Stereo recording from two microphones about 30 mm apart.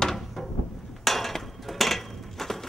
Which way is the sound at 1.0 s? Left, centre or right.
Centre.